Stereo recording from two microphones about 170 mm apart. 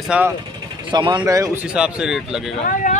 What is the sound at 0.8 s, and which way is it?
Speech, 25° right (ahead or behind).